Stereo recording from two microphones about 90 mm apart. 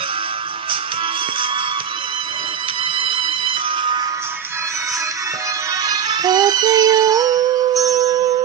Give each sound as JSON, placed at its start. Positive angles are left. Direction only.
{"t": 3.0, "sound": "music", "side_deg": -70}
{"t": 5.9, "sound": "music", "side_deg": -45}